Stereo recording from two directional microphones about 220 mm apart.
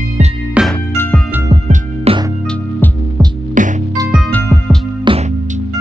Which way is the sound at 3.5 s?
35° right (ahead or behind).